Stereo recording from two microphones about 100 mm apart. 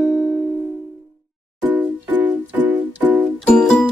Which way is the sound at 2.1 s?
15° right (ahead or behind).